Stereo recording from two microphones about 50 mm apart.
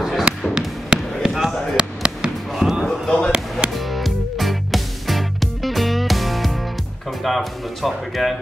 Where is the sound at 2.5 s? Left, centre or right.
Centre.